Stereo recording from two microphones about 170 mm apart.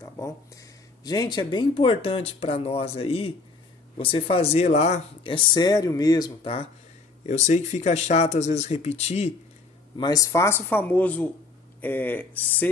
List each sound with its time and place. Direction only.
0.0 s speech: 20° left (ahead or behind)
7.2 s speech: 45° left (ahead or behind)
9.9 s speech: 25° left (ahead or behind)